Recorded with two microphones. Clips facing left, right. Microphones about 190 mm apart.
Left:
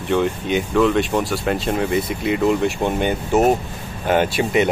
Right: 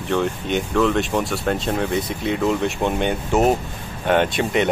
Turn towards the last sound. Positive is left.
turn(degrees=5)  # may be behind; listen again after turning